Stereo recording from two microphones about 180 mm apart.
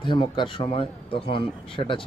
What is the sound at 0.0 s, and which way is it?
Speech, 25° left (ahead or behind).